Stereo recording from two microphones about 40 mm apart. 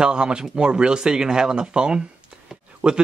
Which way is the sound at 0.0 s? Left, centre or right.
Right.